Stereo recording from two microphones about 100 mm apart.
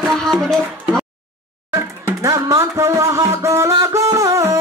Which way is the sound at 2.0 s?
35° right (ahead or behind).